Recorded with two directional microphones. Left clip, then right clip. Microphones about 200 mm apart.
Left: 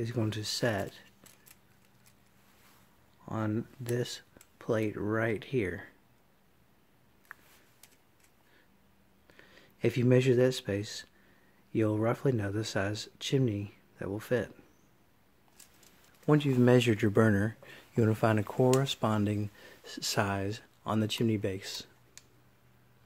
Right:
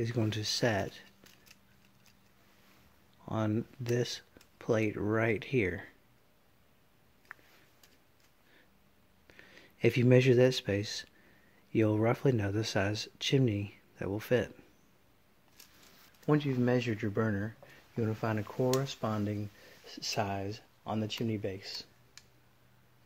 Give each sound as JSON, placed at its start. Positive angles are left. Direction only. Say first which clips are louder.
{"t": 0.0, "sound": "speech", "louder": "right 1 dB", "side_deg": -5}
{"t": 3.3, "sound": "speech", "louder": "right 1 dB", "side_deg": -5}
{"t": 9.3, "sound": "speech", "louder": "right 2 dB", "side_deg": -10}
{"t": 16.3, "sound": "speech", "louder": "left 4 dB", "side_deg": 25}